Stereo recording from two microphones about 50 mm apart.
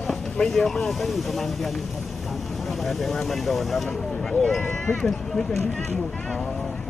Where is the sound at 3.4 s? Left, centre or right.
Centre.